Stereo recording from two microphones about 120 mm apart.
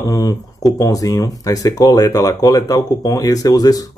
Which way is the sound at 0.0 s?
30° left (ahead or behind).